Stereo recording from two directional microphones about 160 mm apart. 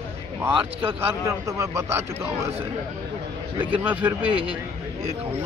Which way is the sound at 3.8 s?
10° right (ahead or behind).